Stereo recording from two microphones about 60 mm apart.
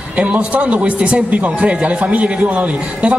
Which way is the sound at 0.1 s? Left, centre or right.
Right.